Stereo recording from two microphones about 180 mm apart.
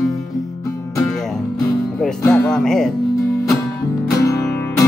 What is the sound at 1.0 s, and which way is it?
Music, centre (ahead or behind).